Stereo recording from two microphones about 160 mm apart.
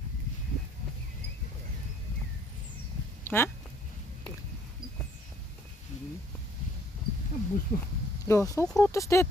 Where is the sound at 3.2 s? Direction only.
15° left (ahead or behind).